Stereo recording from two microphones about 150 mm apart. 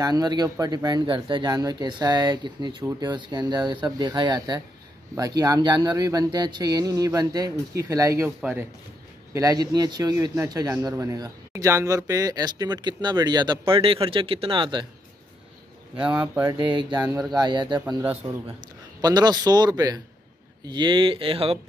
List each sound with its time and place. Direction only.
0.0 s a man's voice: 25° right (ahead or behind); by 8.6 s 10° right (ahead or behind)
9.3 s a man's voice: 25° right (ahead or behind)
16.0 s speech: 5° right (ahead or behind)
16.4 s a man's voice: 35° right (ahead or behind)